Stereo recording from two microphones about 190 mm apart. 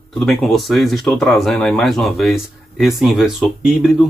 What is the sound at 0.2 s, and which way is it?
Speech, centre (ahead or behind).